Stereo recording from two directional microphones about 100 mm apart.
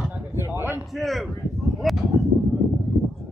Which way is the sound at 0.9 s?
Centre (ahead or behind).